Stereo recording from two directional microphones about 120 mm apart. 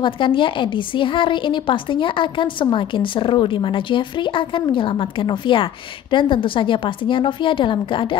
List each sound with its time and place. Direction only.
0.0 s a woman's voice: 45° left (ahead or behind)